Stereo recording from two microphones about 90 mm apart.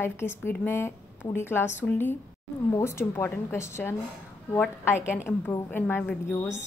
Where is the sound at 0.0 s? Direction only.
25° left (ahead or behind).